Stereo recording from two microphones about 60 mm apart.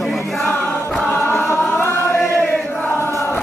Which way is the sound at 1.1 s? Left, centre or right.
Left.